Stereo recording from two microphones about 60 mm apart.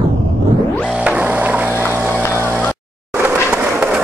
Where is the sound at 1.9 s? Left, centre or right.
Right.